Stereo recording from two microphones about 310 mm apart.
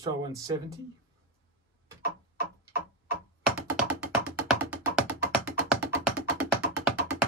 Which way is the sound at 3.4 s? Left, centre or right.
Centre.